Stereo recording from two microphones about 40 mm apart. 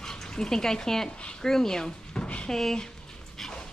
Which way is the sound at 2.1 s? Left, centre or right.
Left.